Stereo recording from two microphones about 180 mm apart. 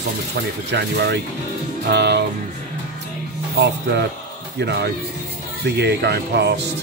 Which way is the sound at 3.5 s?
70° right (ahead or behind).